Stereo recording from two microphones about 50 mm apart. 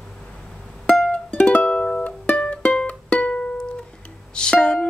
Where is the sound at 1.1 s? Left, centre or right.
Left.